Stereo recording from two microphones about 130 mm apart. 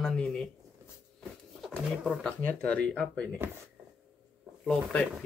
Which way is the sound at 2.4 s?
10° left (ahead or behind).